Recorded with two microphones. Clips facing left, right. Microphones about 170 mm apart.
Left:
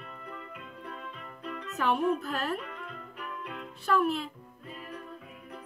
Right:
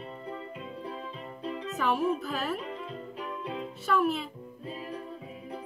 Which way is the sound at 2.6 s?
30° right (ahead or behind).